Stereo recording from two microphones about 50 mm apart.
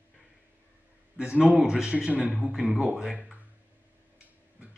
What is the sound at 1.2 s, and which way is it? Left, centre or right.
Speech, centre.